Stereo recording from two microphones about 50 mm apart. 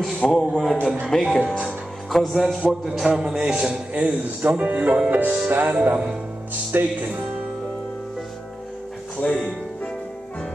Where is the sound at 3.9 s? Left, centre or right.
Right.